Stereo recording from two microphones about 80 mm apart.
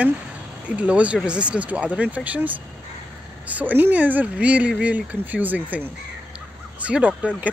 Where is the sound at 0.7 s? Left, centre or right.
Centre.